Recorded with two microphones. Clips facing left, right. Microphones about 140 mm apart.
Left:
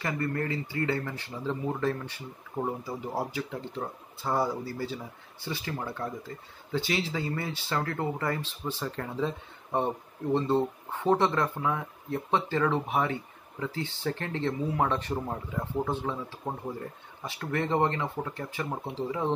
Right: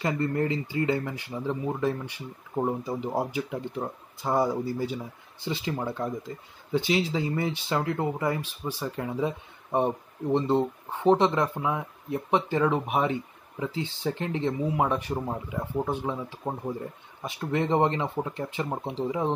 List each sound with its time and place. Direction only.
0.0 s speech: 20° right (ahead or behind)